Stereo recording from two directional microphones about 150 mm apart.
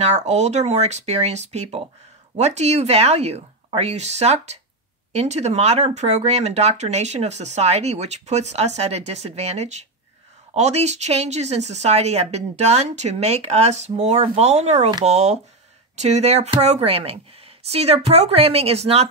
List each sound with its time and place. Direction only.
0.0 s speech: 45° right (ahead or behind)